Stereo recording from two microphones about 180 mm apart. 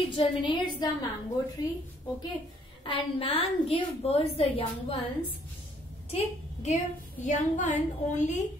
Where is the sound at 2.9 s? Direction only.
30° left (ahead or behind).